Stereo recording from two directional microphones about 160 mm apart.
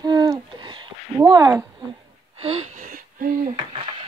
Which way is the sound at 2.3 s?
40° right (ahead or behind).